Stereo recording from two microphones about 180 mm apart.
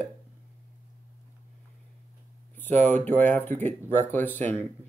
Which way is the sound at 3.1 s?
10° left (ahead or behind).